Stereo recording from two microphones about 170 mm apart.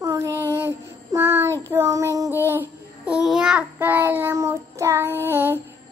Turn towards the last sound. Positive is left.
turn(degrees=-15)  # may be behind; listen again after turning